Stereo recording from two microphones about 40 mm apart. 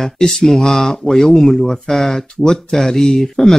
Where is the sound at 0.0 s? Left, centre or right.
Centre.